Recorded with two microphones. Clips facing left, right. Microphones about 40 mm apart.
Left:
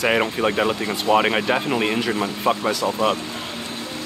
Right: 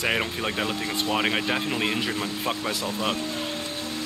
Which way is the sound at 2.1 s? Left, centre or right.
Left.